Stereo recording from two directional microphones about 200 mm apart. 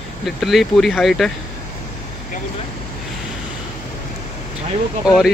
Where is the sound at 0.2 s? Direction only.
Centre (ahead or behind).